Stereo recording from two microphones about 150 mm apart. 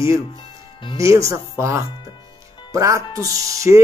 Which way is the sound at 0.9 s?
20° right (ahead or behind).